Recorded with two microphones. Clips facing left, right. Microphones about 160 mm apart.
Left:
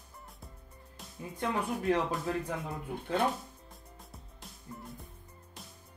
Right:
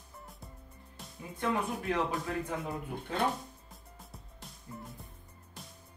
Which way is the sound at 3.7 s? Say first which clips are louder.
Even; centre (ahead or behind).